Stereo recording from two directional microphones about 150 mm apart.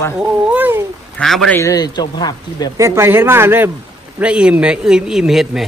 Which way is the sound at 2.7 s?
20° right (ahead or behind).